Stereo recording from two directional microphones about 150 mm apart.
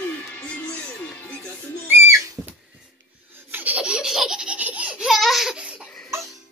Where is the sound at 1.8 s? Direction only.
15° right (ahead or behind).